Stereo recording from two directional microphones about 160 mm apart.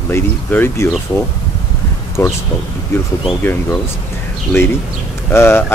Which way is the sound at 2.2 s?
20° left (ahead or behind).